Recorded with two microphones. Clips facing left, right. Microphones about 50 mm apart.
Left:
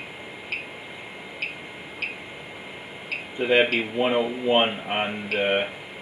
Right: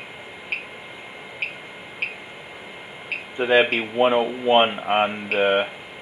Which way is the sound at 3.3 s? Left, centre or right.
Right.